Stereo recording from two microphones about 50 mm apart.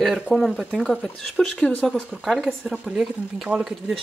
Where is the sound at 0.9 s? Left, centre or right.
Centre.